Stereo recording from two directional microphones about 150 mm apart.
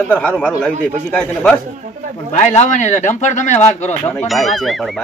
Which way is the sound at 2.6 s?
55° left (ahead or behind).